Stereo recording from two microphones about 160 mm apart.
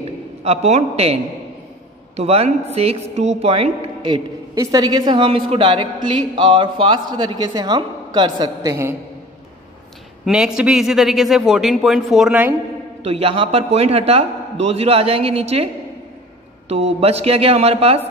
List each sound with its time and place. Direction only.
0.4 s a man's voice: 40° right (ahead or behind); by 8.9 s 20° right (ahead or behind)
10.2 s a man's voice: 5° right (ahead or behind)
13.0 s a man's voice: 40° right (ahead or behind)